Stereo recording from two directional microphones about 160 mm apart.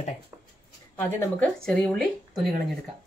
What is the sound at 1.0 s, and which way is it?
Speech, 10° left (ahead or behind).